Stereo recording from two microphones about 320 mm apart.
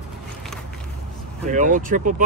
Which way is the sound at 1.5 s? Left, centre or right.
Right.